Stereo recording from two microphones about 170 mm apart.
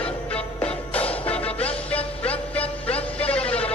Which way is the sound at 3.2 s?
5° left (ahead or behind).